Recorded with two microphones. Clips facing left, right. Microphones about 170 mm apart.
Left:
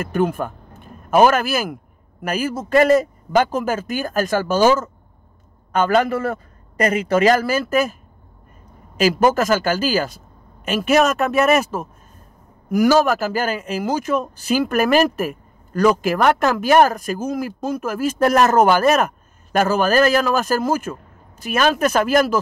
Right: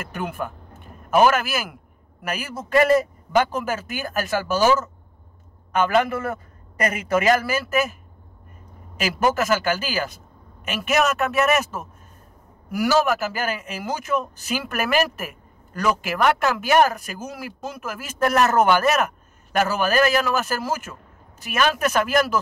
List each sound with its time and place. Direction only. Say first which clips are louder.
0.0 s speech: left 9 dB; 40° left (ahead or behind)
5.8 s speech: left 3 dB; 35° left (ahead or behind)
9.0 s speech: left 6 dB; 40° left (ahead or behind)